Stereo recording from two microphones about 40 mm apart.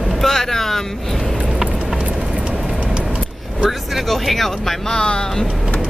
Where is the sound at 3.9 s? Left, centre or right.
Centre.